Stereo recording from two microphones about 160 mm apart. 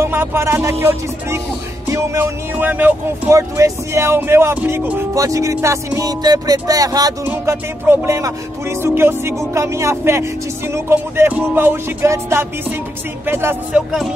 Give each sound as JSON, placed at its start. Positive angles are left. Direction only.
{"t": 0.0, "sound": "speech", "side_deg": -15}